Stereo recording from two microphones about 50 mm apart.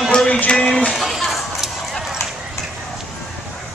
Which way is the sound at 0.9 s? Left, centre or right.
Centre.